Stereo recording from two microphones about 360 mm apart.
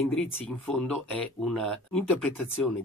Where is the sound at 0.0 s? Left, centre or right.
Centre.